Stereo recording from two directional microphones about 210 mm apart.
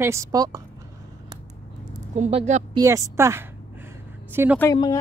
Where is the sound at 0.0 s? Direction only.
15° right (ahead or behind).